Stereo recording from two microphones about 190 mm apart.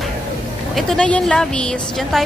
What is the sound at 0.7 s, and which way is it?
A woman's voice, 5° left (ahead or behind).